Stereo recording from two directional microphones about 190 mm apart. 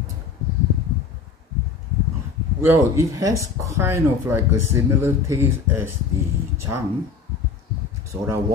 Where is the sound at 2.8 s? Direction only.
15° right (ahead or behind).